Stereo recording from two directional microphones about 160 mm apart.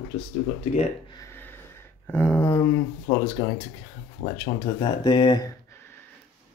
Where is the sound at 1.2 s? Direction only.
15° left (ahead or behind).